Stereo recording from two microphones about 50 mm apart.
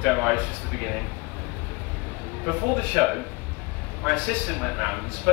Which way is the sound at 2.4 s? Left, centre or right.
Centre.